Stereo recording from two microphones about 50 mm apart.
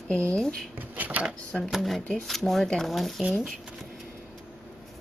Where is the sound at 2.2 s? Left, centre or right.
Centre.